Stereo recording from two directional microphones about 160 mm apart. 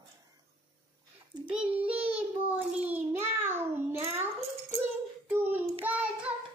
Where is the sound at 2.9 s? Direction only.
15° right (ahead or behind).